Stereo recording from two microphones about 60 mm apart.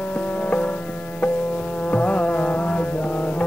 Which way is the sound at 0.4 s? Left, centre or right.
Left.